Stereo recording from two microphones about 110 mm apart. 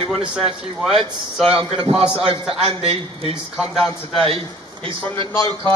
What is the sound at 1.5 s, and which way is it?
Speech, 55° right (ahead or behind).